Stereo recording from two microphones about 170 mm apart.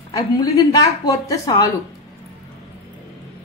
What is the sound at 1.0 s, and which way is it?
Speech, 20° left (ahead or behind).